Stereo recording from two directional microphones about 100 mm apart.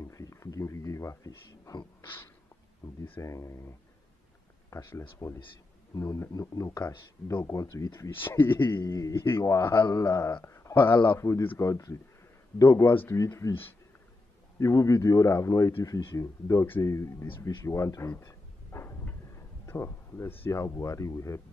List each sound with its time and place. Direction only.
0.0 s a sound: 30° left (ahead or behind)
3.0 s a man's voice: 30° left (ahead or behind)
8.2 s speech: 20° left (ahead or behind)
8.5 s a man's voice: 40° left (ahead or behind)
10.8 s a man's voice: 50° left (ahead or behind)
11.1 s speech: 30° left (ahead or behind)
12.7 s speech: 20° left (ahead or behind)
13.2 s a man's voice: 30° left (ahead or behind)
14.6 s a man's voice: 35° left (ahead or behind)
19.3 s a sound: 30° left (ahead or behind)
20.6 s a man's voice: 30° left (ahead or behind)